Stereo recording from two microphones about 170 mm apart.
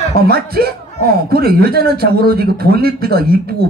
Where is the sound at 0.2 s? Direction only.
65° right (ahead or behind).